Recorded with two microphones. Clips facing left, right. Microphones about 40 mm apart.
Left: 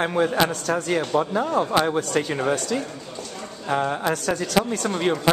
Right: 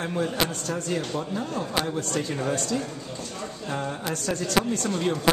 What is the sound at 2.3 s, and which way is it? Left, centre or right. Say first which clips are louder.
Speech: left 4 dB; left.